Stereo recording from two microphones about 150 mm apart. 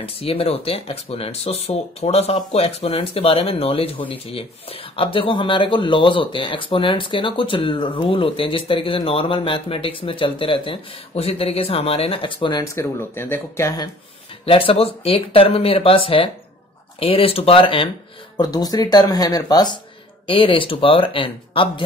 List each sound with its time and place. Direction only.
0.0 s speech: 40° left (ahead or behind)
12.7 s speech: 15° left (ahead or behind)
14.4 s speech: 40° left (ahead or behind)
18.4 s speech: 25° left (ahead or behind)